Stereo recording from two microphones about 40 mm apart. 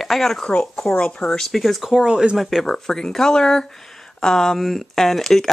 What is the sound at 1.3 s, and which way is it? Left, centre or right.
Speech, centre.